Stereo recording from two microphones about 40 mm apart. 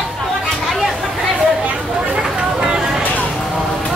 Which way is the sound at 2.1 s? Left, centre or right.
Centre.